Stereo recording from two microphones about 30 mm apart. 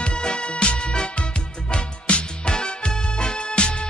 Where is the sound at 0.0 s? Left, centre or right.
Left.